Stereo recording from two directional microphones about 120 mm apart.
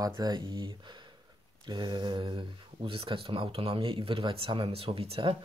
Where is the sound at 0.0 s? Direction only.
30° right (ahead or behind).